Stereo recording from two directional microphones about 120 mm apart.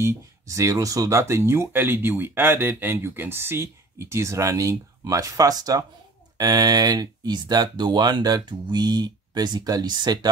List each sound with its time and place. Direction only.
0.0 s speech: 25° right (ahead or behind)